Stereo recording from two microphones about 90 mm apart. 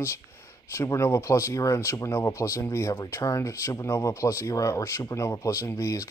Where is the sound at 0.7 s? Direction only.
30° left (ahead or behind).